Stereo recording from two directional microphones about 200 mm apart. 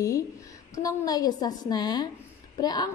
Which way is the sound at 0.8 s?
20° left (ahead or behind).